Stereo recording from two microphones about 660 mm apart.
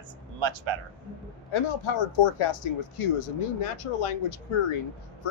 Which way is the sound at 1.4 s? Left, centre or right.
Left.